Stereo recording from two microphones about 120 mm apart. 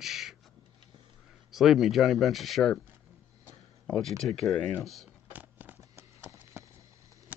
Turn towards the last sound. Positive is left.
turn(degrees=-25)  # may be behind; listen again after turning